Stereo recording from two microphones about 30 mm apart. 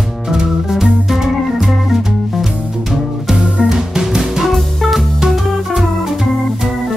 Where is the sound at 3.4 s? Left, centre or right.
Right.